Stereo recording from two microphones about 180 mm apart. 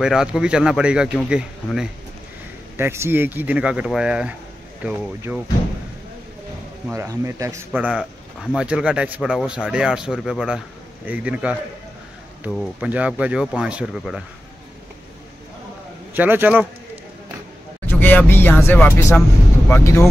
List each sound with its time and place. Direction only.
0.0 s speech: 5° right (ahead or behind)
6.9 s speech: 15° right (ahead or behind)
16.1 s speech: 10° right (ahead or behind)
17.8 s speech: 10° left (ahead or behind)